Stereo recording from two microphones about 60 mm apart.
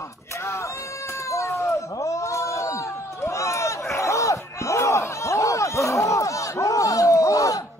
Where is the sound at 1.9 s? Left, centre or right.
Left.